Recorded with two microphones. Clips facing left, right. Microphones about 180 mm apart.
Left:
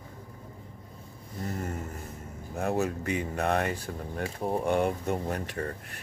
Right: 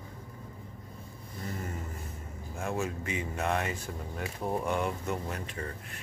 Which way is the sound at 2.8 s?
60° left (ahead or behind).